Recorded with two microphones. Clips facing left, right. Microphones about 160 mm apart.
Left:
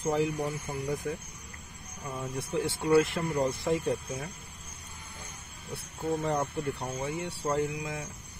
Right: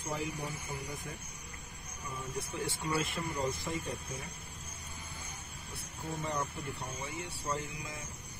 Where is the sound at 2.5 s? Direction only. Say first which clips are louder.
Left 12 dB; 70° left (ahead or behind).